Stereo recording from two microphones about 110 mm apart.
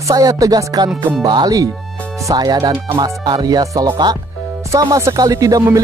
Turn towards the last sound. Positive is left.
turn(degrees=-30)  # may be behind; listen again after turning